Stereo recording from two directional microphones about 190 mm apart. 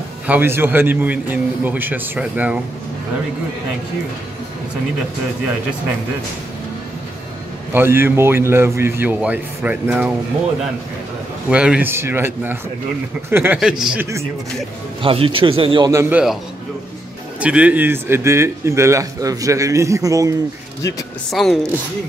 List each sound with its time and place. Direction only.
0.3 s speech: 10° right (ahead or behind)
7.7 s speech: 10° right (ahead or behind)
11.4 s speech: 5° right (ahead or behind)
15.0 s a man's voice: 30° right (ahead or behind); by 16.3 s 10° right (ahead or behind)
17.4 s speech: 5° right (ahead or behind)
21.3 s speech: centre (ahead or behind)